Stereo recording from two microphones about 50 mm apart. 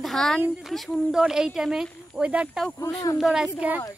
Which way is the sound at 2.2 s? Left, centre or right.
Right.